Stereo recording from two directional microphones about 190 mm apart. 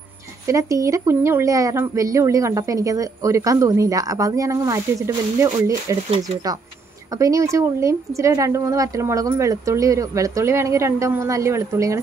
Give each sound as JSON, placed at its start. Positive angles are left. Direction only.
{"t": 0.5, "sound": "speech", "side_deg": -15}
{"t": 7.2, "sound": "speech", "side_deg": -15}